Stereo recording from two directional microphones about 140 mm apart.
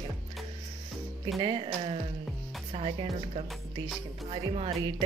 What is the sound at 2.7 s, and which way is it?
Music, 45° right (ahead or behind).